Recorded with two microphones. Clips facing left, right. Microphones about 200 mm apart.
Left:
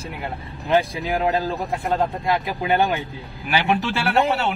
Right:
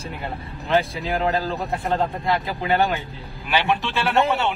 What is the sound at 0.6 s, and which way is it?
Speech, 15° left (ahead or behind).